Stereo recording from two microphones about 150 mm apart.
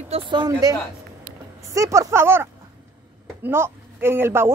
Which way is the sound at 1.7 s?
20° right (ahead or behind).